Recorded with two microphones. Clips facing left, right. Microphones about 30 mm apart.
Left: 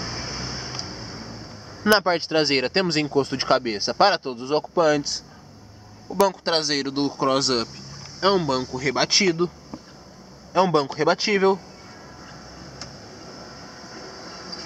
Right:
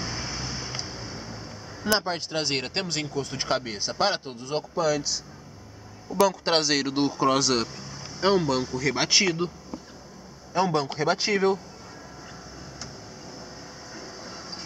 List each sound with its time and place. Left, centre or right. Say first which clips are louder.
0.0 s a sound: left 1 dB; centre
2.0 s speech: left 8 dB; left
6.0 s speech: left 2 dB; centre
7.3 s speech: left 2 dB; left
10.5 s a man's voice: left 5 dB; left
12.7 s vehicle: left 1 dB; centre
13.9 s train: left 1 dB; centre